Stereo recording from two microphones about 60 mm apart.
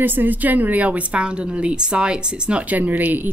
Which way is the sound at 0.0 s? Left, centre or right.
Right.